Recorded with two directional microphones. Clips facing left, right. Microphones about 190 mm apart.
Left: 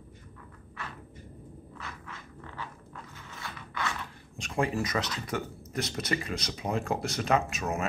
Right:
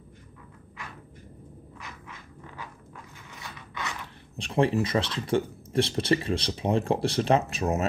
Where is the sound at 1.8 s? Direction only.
15° right (ahead or behind).